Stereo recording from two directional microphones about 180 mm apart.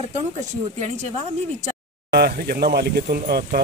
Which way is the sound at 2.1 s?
60° right (ahead or behind).